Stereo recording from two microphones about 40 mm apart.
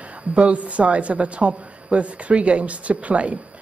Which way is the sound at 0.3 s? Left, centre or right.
Right.